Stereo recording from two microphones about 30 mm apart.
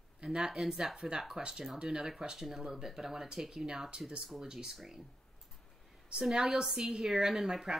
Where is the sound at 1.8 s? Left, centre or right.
Centre.